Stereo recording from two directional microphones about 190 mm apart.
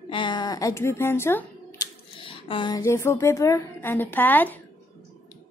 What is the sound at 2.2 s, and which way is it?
A woman's voice, 30° left (ahead or behind).